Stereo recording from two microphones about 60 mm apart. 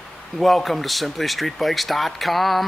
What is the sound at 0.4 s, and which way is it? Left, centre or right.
Speech, centre.